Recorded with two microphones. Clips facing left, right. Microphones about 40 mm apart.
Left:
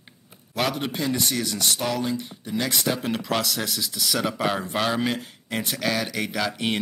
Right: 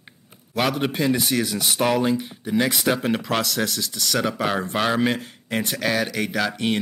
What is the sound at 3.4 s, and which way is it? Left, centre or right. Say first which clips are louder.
Speech: right 3 dB; centre.